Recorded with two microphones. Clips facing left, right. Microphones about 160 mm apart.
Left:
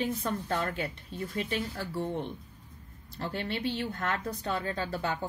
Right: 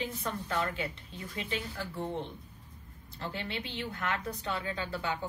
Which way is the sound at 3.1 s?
45° left (ahead or behind).